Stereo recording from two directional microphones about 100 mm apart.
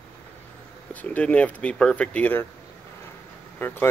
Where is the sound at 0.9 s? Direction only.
15° left (ahead or behind).